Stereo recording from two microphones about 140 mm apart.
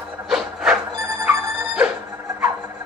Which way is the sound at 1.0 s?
15° right (ahead or behind).